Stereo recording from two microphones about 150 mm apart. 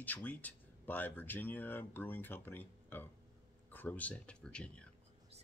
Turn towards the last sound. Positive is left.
turn(degrees=5)  # may be behind; listen again after turning